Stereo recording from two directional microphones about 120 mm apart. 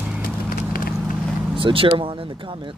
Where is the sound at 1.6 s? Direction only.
45° right (ahead or behind).